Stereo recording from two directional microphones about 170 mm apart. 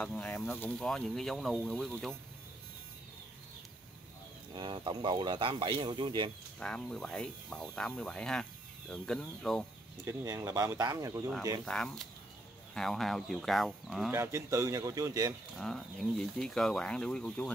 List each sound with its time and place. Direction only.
0.0 s speech: 10° left (ahead or behind)
4.6 s speech: 30° right (ahead or behind)
6.6 s speech: 5° left (ahead or behind)
10.0 s speech: 20° right (ahead or behind)
11.6 s speech: 5° left (ahead or behind)
14.1 s speech: 15° right (ahead or behind)
15.5 s speech: centre (ahead or behind)